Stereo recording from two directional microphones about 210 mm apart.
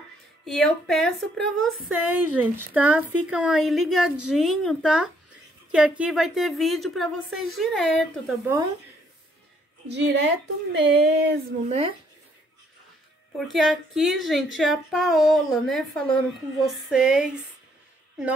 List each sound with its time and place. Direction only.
0.5 s a woman's voice: 5° left (ahead or behind)
9.8 s speech: 55° right (ahead or behind)
13.5 s a woman's voice: centre (ahead or behind)